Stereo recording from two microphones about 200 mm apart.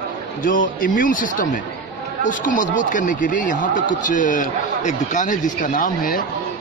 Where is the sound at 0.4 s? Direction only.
45° left (ahead or behind).